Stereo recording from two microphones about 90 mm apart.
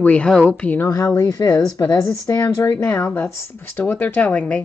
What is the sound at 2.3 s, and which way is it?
Speech, 35° left (ahead or behind).